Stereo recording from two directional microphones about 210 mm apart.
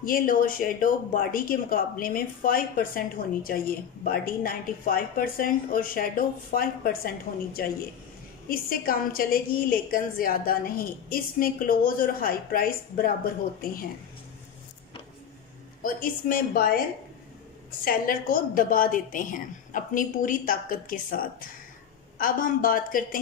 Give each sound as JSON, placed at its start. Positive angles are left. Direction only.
{"t": 0.0, "sound": "speech", "side_deg": 40}
{"t": 15.8, "sound": "speech", "side_deg": 40}
{"t": 17.8, "sound": "a woman's voice", "side_deg": 40}